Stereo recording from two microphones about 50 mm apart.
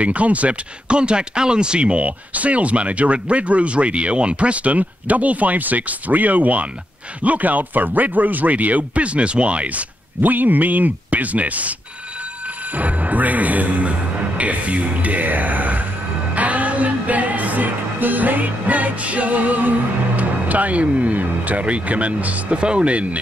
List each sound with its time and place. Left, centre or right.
0.0 s speech: right
10.2 s speech: right
12.7 s speech: right
16.3 s music: right
20.2 s speech: right